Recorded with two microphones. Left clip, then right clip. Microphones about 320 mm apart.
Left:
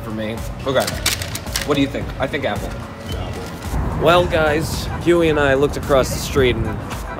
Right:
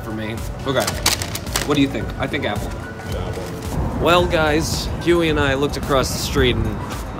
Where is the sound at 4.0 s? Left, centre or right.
Centre.